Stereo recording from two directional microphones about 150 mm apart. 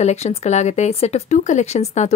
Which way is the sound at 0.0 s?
45° left (ahead or behind).